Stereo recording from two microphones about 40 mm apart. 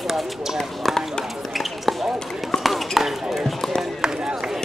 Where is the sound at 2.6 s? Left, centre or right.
Centre.